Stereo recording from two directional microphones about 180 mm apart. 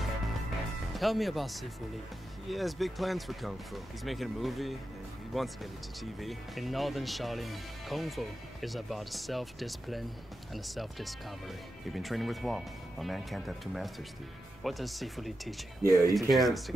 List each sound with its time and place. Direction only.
0.9 s speech: centre (ahead or behind)
15.8 s speech: 20° right (ahead or behind)
16.2 s speech: centre (ahead or behind)